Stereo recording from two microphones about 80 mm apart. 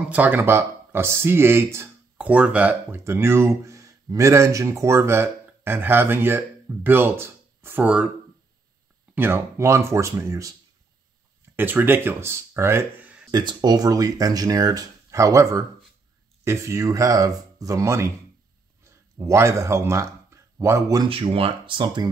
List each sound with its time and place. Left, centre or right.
0.1 s speech: right
2.1 s speech: centre
3.0 s speech: right
7.8 s speech: centre
9.1 s speech: right
11.5 s speech: right
13.3 s speech: right
21.0 s speech: right